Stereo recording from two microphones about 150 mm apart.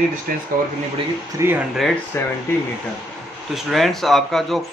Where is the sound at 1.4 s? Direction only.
15° right (ahead or behind).